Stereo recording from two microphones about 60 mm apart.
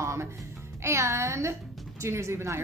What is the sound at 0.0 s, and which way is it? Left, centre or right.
Music, right.